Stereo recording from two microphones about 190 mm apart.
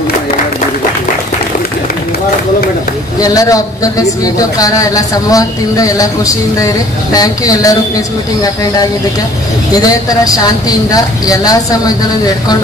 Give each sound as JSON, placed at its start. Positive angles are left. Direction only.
{"t": 3.2, "sound": "a man's voice", "side_deg": 20}
{"t": 9.8, "sound": "a man's voice", "side_deg": 20}